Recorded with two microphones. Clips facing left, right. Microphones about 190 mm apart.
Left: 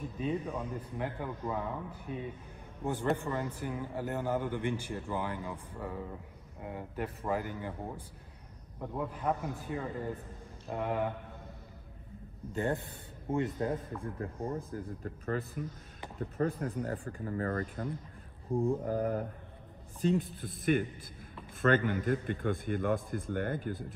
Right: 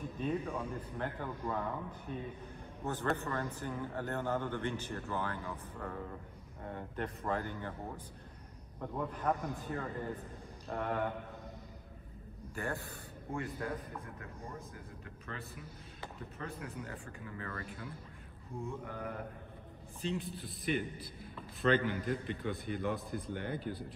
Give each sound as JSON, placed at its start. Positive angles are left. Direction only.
{"t": 0.2, "sound": "a man's voice", "side_deg": 10}
{"t": 12.5, "sound": "a man's voice", "side_deg": 20}
{"t": 20.0, "sound": "a man's voice", "side_deg": 50}